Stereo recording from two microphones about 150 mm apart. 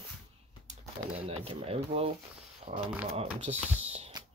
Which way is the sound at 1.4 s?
40° right (ahead or behind).